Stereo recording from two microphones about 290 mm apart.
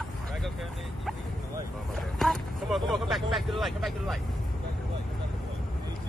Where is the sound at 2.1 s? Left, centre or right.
Centre.